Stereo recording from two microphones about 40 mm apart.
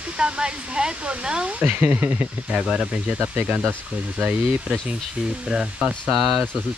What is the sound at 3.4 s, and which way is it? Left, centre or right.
Speech, right.